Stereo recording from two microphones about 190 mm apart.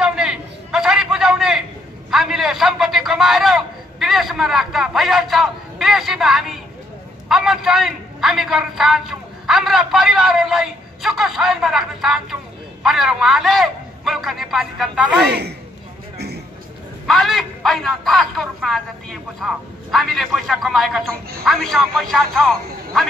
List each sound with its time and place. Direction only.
0.0 s a sound: 5° right (ahead or behind)
7.2 s a man's voice: centre (ahead or behind)
15.1 s a man's voice: 60° right (ahead or behind)
17.0 s a man's voice: centre (ahead or behind)